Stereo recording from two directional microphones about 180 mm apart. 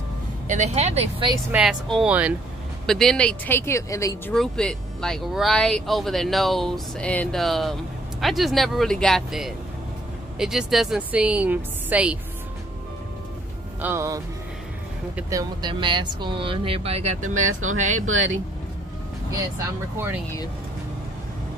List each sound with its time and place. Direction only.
0.5 s speech: 40° right (ahead or behind)
1.3 s a woman's voice: 10° right (ahead or behind); by 4.2 s 15° left (ahead or behind)
4.3 s a woman's voice: 5° left (ahead or behind)
13.7 s a woman's voice: 15° right (ahead or behind); by 18.0 s 40° right (ahead or behind)
19.6 s a woman's voice: 15° right (ahead or behind)